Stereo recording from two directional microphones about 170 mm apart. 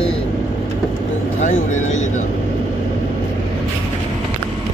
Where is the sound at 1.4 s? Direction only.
45° left (ahead or behind).